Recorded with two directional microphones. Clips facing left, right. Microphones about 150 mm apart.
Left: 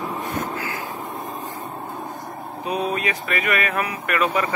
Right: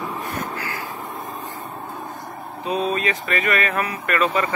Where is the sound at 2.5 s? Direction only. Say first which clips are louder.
Right 2 dB; 15° left (ahead or behind).